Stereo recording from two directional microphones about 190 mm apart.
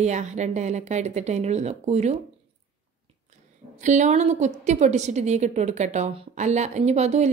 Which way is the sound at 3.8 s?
40° right (ahead or behind).